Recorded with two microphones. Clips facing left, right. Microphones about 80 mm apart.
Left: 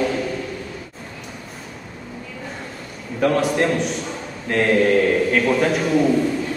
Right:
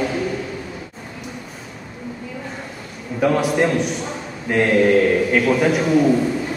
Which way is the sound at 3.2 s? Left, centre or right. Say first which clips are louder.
Right 1 dB; centre.